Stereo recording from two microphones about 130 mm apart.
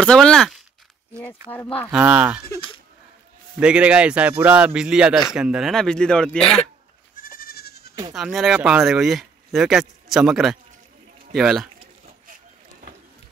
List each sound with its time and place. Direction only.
0.0 s speech: 5° left (ahead or behind)
1.9 s a man's voice: 10° right (ahead or behind)
3.5 s a man's voice: 10° right (ahead or behind)
7.2 s goat: 90° left
8.1 s speech: centre (ahead or behind)